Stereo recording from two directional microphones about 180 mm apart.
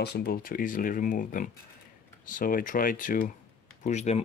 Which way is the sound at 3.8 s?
40° left (ahead or behind).